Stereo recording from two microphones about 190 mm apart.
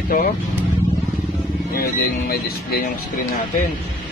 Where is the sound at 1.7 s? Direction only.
50° left (ahead or behind).